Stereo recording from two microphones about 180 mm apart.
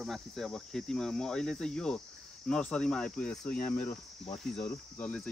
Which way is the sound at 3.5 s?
55° left (ahead or behind).